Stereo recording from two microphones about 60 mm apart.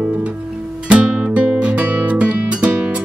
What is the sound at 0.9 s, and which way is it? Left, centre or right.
Music, right.